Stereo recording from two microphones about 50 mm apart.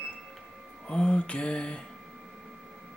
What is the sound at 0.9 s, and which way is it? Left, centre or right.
Speech, left.